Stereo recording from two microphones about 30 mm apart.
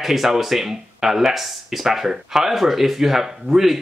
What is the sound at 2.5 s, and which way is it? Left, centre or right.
Speech, centre.